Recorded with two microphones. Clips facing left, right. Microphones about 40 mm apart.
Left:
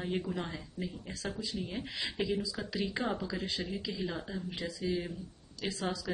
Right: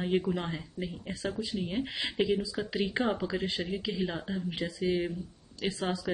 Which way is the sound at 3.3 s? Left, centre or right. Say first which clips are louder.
Right 4 dB; right.